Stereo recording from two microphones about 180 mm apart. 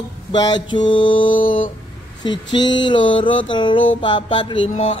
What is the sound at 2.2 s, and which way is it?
Speech, 25° left (ahead or behind).